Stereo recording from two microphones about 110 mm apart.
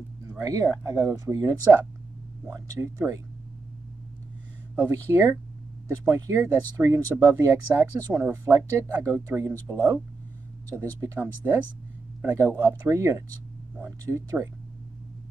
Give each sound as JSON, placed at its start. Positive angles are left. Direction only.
{"t": 0.3, "sound": "speech", "side_deg": -30}
{"t": 4.7, "sound": "speech", "side_deg": -25}